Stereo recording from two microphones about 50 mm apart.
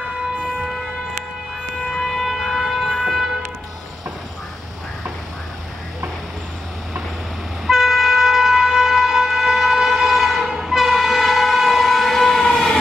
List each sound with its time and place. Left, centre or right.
0.6 s a sound: centre
1.9 s siren: centre
7.6 s train: centre